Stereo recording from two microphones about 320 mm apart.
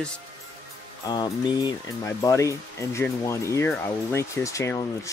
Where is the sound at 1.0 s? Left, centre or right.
Centre.